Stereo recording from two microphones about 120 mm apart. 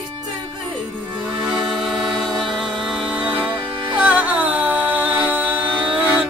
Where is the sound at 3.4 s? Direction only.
40° right (ahead or behind).